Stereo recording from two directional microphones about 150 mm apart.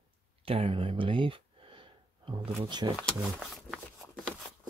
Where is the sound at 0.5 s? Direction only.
35° right (ahead or behind).